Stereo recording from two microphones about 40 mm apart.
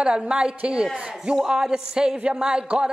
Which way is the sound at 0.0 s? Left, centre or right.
Right.